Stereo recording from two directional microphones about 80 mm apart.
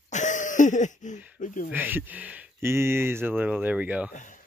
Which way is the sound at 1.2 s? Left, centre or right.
Right.